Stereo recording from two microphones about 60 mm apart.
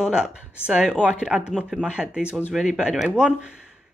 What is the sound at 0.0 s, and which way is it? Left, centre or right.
Speech, centre.